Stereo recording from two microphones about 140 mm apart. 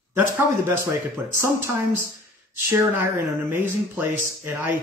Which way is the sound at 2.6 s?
10° right (ahead or behind).